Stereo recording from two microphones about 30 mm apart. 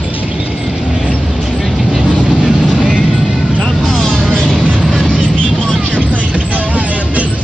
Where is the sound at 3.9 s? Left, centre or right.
Left.